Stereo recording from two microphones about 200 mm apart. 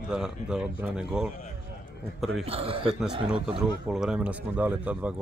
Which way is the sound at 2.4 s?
30° right (ahead or behind).